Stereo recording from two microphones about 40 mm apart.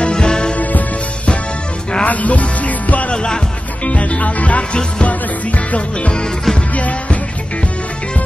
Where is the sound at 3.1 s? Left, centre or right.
Left.